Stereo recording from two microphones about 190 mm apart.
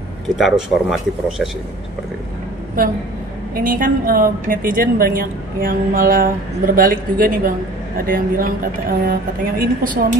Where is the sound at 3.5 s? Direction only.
50° right (ahead or behind).